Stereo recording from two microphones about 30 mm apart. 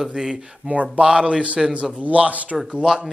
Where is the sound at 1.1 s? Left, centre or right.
Right.